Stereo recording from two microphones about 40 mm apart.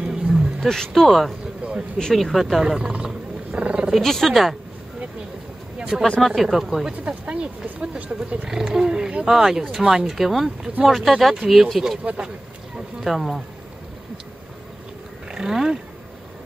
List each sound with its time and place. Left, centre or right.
0.0 s roaring cats: right
0.7 s speech: centre
1.6 s a sound: right
2.1 s speech: centre
2.6 s speech: centre
3.5 s roaring cats: right
4.0 s speech: centre
5.9 s speech: centre
6.9 s speech: right
8.5 s speech: centre
12.0 s speech: right
13.0 s speech: centre
15.3 s speech: centre